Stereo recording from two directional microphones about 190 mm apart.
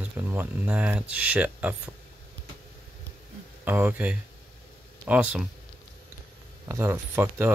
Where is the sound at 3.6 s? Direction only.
10° right (ahead or behind).